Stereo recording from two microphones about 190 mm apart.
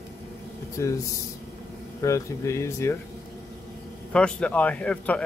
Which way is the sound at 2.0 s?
15° left (ahead or behind).